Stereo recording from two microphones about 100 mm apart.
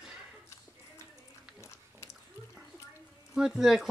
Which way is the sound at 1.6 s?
25° left (ahead or behind).